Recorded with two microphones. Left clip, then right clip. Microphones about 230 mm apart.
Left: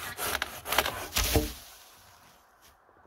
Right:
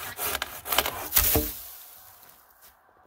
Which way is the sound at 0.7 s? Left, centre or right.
Centre.